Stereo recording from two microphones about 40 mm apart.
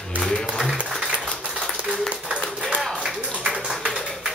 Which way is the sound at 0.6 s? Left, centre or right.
Centre.